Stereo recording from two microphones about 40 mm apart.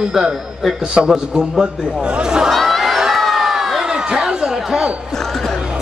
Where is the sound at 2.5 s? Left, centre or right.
Centre.